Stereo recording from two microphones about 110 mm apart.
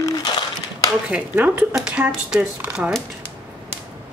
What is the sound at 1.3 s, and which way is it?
Speech, 15° right (ahead or behind).